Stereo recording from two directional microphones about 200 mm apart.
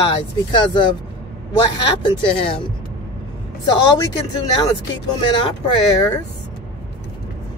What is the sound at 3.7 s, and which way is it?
Speech, 25° left (ahead or behind).